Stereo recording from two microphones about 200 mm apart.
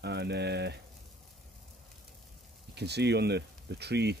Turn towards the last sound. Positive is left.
turn(degrees=-55)  # may be behind; listen again after turning